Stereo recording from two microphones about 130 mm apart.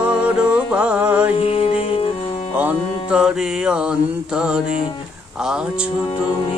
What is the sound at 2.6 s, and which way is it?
Mantra, 10° right (ahead or behind).